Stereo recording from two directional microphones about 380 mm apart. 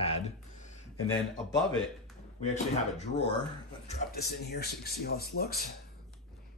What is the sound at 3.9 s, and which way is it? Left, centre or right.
Speech, left.